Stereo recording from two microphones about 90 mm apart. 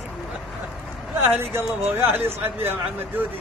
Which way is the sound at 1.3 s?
25° right (ahead or behind).